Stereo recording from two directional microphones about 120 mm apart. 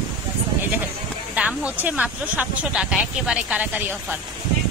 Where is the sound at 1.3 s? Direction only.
10° right (ahead or behind).